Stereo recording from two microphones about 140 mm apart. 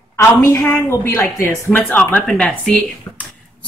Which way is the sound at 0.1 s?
20° left (ahead or behind).